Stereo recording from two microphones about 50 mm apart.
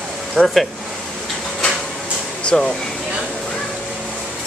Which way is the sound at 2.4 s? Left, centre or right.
Centre.